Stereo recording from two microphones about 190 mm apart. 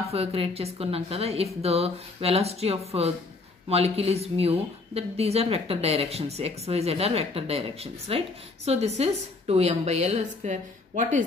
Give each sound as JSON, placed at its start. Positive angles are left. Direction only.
{"t": 0.1, "sound": "a woman's voice", "side_deg": -30}